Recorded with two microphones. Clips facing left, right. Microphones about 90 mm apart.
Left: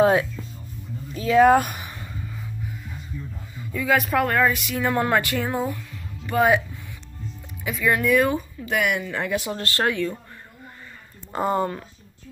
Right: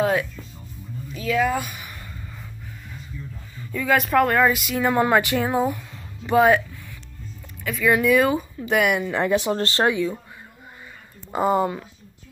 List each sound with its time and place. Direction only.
0.0 s speech: 30° left (ahead or behind)
1.4 s speech: 50° left (ahead or behind)
3.5 s speech: 5° left (ahead or behind); by 6.4 s 20° right (ahead or behind)
7.7 s speech: centre (ahead or behind)
8.5 s speech: 15° right (ahead or behind)
9.2 s speech: 25° right (ahead or behind)
11.3 s speech: 5° right (ahead or behind)